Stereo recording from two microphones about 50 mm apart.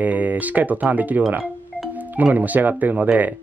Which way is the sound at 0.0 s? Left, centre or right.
Right.